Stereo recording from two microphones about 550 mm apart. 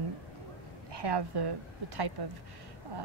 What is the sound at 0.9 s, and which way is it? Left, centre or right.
Speech, right.